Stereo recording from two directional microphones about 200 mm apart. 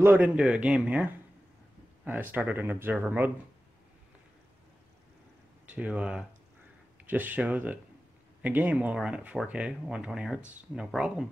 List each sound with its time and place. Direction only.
0.0 s speech: 10° right (ahead or behind)
5.7 s speech: 5° right (ahead or behind)